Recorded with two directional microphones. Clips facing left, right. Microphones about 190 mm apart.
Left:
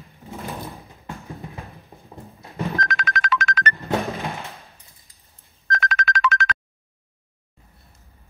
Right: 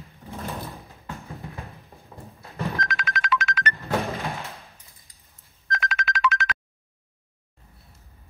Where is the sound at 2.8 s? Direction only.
45° left (ahead or behind).